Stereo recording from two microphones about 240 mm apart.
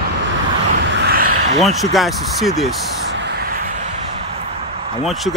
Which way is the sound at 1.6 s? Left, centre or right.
Centre.